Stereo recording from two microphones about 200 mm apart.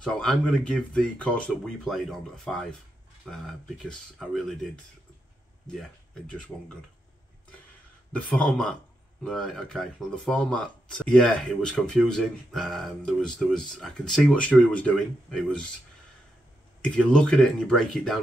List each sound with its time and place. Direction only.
0.0 s a man's voice: 5° left (ahead or behind)
6.5 s a man's voice: 5° left (ahead or behind)
8.1 s a man's voice: 5° left (ahead or behind)
16.8 s a man's voice: 5° left (ahead or behind)